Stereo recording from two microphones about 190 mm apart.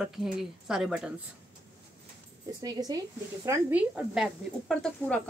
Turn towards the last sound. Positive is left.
turn(degrees=5)  # may be behind; listen again after turning